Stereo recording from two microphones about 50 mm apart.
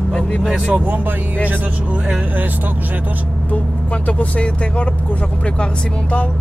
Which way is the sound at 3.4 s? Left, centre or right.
Left.